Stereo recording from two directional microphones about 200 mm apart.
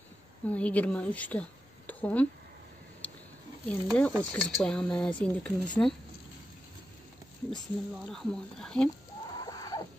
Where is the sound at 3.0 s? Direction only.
5° left (ahead or behind).